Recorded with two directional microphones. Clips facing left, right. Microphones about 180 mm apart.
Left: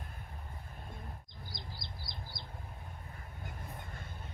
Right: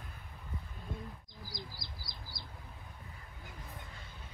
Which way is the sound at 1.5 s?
25° left (ahead or behind).